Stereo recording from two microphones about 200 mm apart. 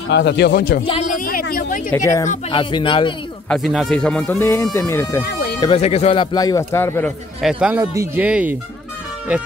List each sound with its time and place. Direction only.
0.1 s speech: 60° left (ahead or behind)
1.1 s a sound: 45° left (ahead or behind)
1.9 s speech: 15° left (ahead or behind)
2.5 s speech: 25° left (ahead or behind)
3.4 s speech: centre (ahead or behind)
5.2 s a sound: 50° left (ahead or behind)
5.6 s speech: 30° left (ahead or behind)
6.3 s speech: 15° left (ahead or behind)
7.4 s a man's voice: 5° right (ahead or behind)